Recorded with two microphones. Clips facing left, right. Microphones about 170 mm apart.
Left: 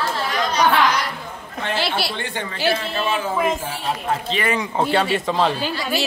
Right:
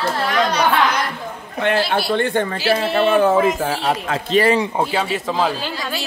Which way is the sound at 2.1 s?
50° right (ahead or behind).